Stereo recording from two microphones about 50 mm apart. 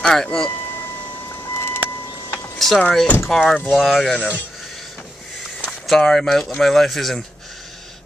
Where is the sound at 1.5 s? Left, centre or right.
Left.